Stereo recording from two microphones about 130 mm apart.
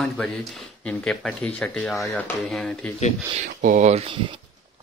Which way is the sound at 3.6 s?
70° right (ahead or behind).